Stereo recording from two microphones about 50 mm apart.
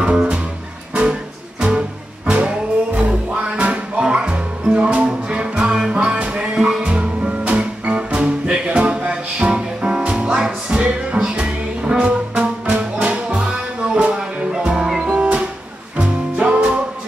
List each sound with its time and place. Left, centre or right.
0.0 s music: right
1.6 s music: centre